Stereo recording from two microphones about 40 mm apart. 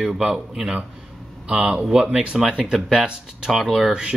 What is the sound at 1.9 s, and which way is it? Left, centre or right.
Speech, centre.